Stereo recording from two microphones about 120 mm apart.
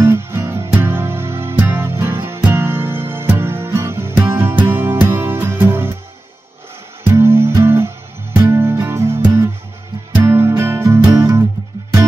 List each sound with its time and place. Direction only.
0.0 s music: 20° right (ahead or behind)
7.1 s music: 20° right (ahead or behind)